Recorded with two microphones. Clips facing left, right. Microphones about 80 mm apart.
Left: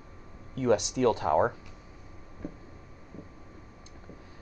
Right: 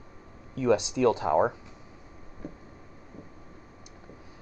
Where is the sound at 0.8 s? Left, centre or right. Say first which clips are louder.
Right 1 dB; right.